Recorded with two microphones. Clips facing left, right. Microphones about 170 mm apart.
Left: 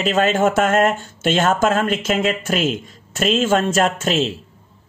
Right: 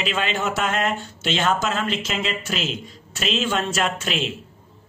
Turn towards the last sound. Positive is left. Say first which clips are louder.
# left 6 dB
turn(degrees=45)  # may be behind; listen again after turning